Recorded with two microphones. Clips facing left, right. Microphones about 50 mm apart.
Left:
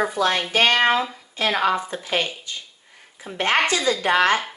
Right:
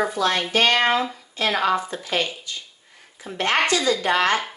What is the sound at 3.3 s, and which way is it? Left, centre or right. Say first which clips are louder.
A woman's voice: even; left.